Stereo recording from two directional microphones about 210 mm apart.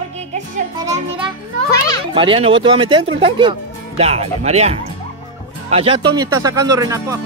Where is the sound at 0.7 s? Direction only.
20° right (ahead or behind).